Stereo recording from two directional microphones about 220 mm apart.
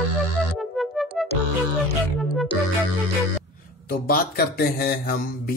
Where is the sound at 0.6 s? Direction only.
Centre (ahead or behind).